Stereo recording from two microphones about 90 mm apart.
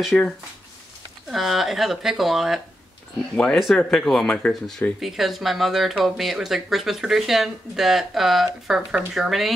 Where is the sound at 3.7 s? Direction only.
5° left (ahead or behind).